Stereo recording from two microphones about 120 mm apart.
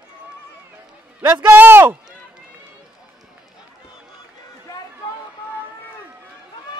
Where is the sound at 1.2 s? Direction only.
15° right (ahead or behind).